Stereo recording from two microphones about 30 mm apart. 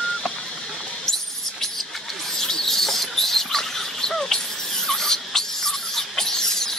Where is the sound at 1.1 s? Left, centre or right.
Centre.